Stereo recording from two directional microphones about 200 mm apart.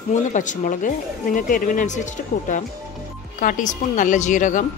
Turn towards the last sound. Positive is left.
turn(degrees=40)  # may be behind; listen again after turning